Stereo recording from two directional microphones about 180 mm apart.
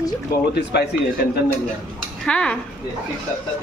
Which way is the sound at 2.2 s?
5° left (ahead or behind).